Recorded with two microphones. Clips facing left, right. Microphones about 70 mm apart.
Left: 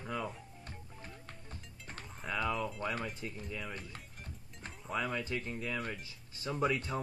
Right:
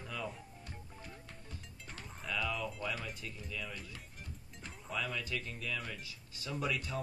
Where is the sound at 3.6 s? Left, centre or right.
Left.